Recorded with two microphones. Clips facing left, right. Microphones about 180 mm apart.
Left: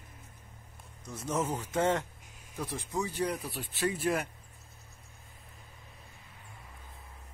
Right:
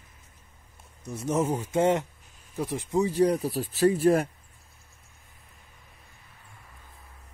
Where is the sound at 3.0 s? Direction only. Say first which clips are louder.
Right 10 dB; 35° right (ahead or behind).